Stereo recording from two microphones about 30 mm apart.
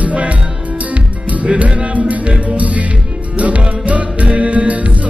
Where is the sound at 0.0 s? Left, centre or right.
Right.